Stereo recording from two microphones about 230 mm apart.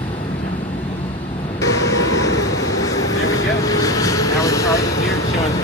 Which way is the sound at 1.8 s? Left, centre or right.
Left.